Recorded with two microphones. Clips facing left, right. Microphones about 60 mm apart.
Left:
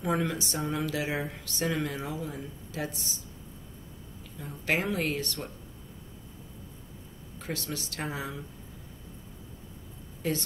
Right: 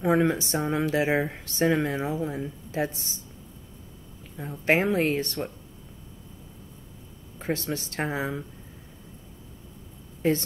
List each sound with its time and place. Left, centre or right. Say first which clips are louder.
0.0 s speech: right 7 dB; right
4.4 s speech: right 6 dB; right
7.3 s speech: right 7 dB; right
10.2 s speech: right 7 dB; right